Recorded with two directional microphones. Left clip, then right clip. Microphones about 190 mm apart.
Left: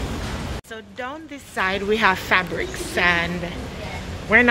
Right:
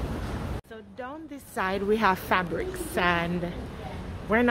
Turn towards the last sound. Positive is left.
turn(degrees=-10)  # may be behind; listen again after turning